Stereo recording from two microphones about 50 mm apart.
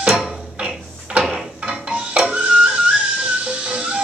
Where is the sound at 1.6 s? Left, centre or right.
Right.